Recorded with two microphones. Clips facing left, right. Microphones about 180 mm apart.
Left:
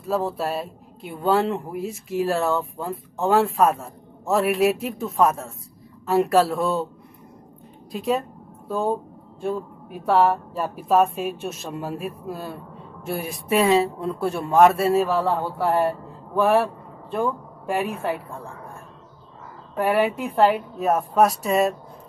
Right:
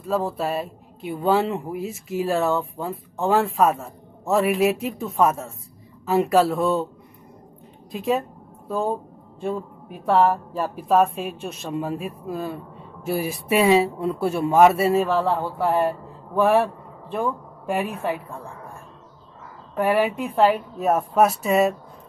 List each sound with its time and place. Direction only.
0.0 s speech: centre (ahead or behind)
7.9 s a woman's voice: centre (ahead or behind)
19.7 s speech: centre (ahead or behind)